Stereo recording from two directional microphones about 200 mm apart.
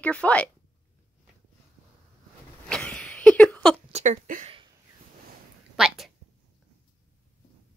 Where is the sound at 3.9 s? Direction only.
40° right (ahead or behind).